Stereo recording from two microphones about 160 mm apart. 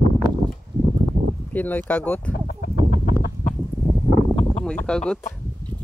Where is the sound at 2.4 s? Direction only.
60° left (ahead or behind).